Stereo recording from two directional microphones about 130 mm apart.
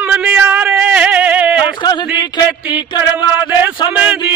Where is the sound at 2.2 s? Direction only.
35° left (ahead or behind).